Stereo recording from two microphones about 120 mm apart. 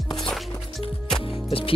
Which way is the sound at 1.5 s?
50° left (ahead or behind).